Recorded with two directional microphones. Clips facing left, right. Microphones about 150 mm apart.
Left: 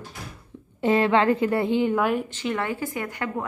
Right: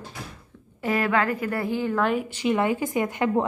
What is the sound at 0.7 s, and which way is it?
A woman's voice, 25° left (ahead or behind).